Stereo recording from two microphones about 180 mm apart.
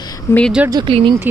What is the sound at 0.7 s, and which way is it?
Speech, 25° right (ahead or behind).